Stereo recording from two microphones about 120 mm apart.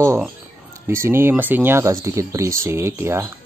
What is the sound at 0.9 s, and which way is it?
Speech, 20° right (ahead or behind).